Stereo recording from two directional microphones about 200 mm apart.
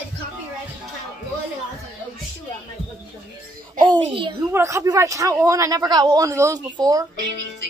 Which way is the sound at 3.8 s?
25° right (ahead or behind).